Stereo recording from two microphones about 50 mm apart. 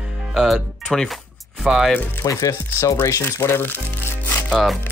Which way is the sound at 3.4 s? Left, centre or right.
Left.